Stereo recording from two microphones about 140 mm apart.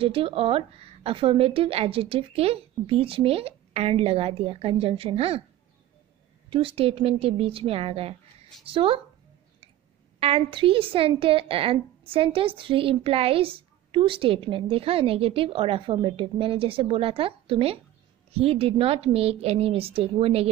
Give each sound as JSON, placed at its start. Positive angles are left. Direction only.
{"t": 0.0, "sound": "a woman's voice", "side_deg": -40}
{"t": 6.5, "sound": "a woman's voice", "side_deg": -40}
{"t": 10.2, "sound": "a woman's voice", "side_deg": -40}